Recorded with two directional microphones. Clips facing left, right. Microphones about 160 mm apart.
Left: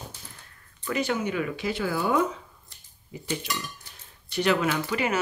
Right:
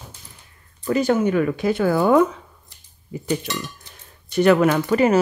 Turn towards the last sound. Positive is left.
turn(degrees=-45)  # may be behind; listen again after turning